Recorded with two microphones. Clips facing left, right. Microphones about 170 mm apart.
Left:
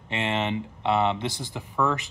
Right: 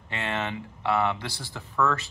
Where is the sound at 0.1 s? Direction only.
20° left (ahead or behind).